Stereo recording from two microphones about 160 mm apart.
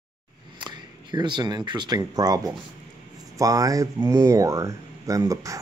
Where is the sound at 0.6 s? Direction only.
30° right (ahead or behind).